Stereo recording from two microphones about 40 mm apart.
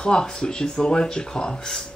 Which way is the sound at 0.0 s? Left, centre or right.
Left.